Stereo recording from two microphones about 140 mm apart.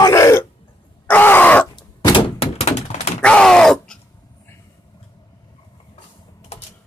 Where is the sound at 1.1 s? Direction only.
15° left (ahead or behind).